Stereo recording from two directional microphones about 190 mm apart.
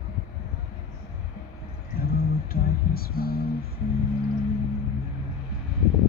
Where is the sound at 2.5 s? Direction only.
50° left (ahead or behind).